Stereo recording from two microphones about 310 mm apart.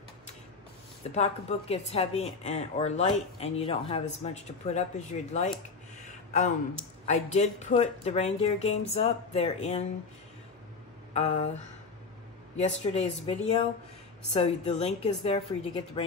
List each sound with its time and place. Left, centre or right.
1.1 s speech: centre
7.1 s speech: left
11.1 s speech: left
12.5 s speech: left